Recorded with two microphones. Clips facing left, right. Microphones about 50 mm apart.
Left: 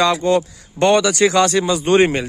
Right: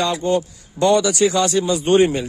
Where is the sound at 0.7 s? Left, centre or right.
Left.